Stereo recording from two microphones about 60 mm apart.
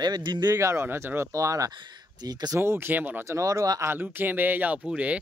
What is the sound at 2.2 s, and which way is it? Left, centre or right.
Speech, right.